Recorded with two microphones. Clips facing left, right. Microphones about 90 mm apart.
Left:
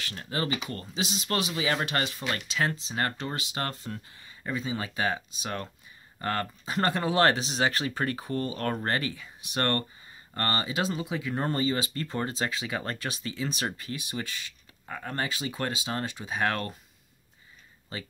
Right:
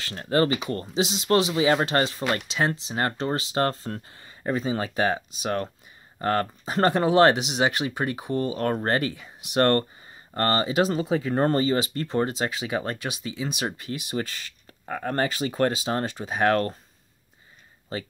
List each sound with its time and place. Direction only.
0.0 s speech: 35° right (ahead or behind)
0.9 s speech: 25° right (ahead or behind)